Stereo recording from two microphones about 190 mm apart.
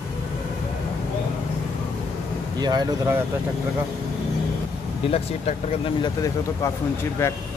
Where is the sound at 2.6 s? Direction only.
20° right (ahead or behind).